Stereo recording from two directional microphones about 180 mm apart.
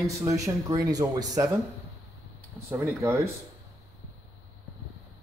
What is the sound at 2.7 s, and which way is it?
Speech, 10° right (ahead or behind).